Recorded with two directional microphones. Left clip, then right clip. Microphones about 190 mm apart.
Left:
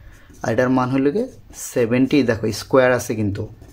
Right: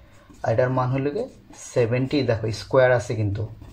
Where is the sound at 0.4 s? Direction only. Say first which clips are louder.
Left 3 dB; 55° left (ahead or behind).